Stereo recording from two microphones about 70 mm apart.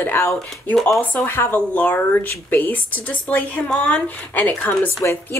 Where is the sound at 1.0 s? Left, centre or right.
Left.